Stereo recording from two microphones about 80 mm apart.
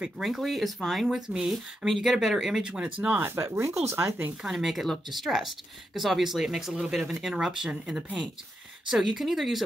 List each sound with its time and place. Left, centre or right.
0.2 s speech: centre
3.2 s speech: right
4.4 s speech: centre